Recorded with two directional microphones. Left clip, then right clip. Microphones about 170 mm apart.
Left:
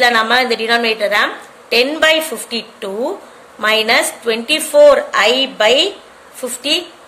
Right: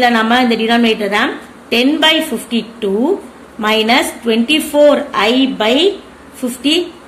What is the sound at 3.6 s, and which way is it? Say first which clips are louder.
A woman's voice: right 1 dB; 35° left (ahead or behind).